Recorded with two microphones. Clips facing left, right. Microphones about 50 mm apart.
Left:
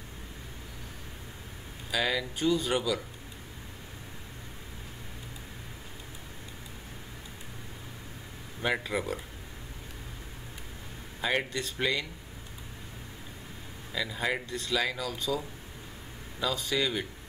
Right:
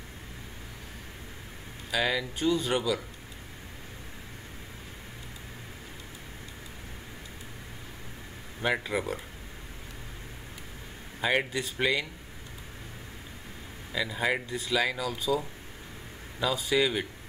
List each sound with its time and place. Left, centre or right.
1.9 s speech: centre
8.5 s speech: centre
11.1 s speech: centre
13.9 s speech: centre